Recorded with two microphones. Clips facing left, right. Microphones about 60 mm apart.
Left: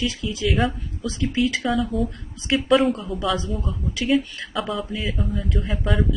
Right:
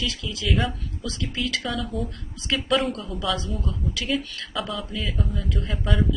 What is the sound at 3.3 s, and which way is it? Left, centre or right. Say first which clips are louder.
Speech: left 3 dB; left.